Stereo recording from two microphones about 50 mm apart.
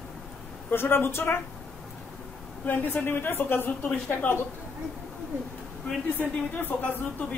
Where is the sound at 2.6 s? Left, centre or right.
Left.